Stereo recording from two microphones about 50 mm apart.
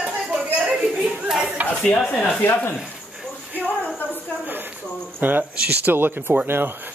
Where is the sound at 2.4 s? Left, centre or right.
Left.